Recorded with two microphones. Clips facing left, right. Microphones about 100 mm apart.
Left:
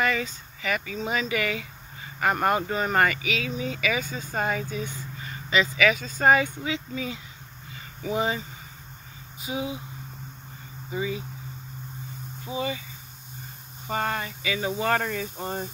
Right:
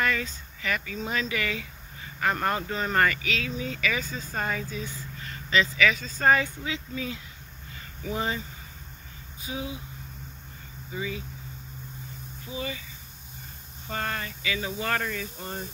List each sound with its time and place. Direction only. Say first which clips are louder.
0.0 s speech: left 2 dB; 5° left (ahead or behind)
10.9 s speech: left 4 dB; 25° left (ahead or behind)
12.4 s speech: left 5 dB; 25° left (ahead or behind)
13.8 s speech: left 4 dB; 20° left (ahead or behind)